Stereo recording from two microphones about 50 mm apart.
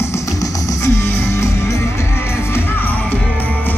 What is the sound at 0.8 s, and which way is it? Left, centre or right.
Music, left.